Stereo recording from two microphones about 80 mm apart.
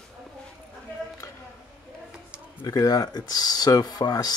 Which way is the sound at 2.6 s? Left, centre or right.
Left.